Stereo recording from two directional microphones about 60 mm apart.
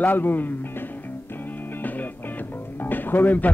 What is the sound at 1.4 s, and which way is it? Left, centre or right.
Music, left.